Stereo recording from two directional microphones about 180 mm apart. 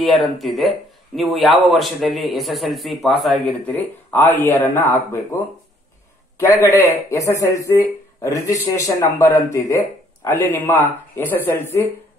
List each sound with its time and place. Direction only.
0.0 s speech: centre (ahead or behind)
3.6 s a man's voice: 10° left (ahead or behind)